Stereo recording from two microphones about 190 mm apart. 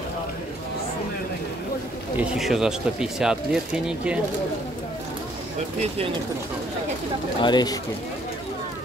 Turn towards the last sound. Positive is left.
turn(degrees=20)  # may be behind; listen again after turning